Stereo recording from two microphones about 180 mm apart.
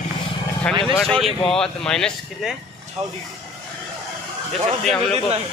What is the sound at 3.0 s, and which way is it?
Speech, 35° right (ahead or behind).